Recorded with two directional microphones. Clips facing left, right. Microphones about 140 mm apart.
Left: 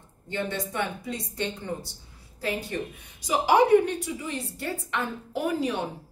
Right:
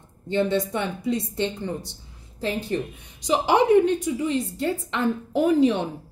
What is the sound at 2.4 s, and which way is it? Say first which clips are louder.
A woman's voice: right 4 dB; 25° right (ahead or behind).